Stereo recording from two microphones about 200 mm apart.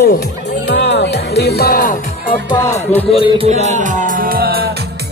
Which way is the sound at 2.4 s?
15° left (ahead or behind).